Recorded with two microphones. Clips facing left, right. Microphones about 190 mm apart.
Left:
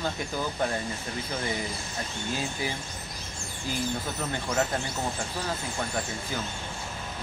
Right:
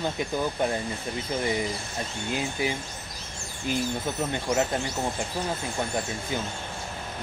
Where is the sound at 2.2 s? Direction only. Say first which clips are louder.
Right 4 dB; 15° right (ahead or behind).